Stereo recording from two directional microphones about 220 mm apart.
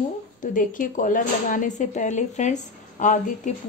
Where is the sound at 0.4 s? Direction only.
35° left (ahead or behind).